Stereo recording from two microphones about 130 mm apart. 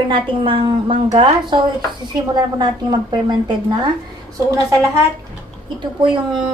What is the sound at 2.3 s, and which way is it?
A woman's voice, 35° right (ahead or behind).